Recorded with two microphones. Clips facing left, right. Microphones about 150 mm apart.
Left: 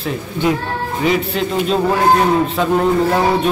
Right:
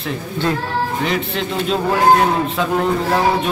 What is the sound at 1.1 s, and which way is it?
Speech, 5° left (ahead or behind).